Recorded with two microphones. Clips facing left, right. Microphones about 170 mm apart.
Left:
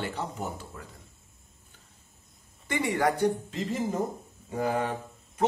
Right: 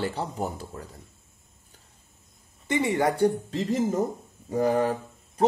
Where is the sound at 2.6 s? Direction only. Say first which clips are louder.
Right 3 dB; 20° right (ahead or behind).